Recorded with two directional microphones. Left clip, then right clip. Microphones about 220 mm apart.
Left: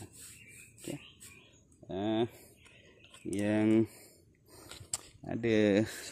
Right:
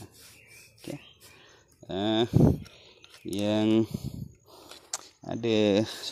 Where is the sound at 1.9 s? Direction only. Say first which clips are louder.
Right 6 dB; 25° right (ahead or behind).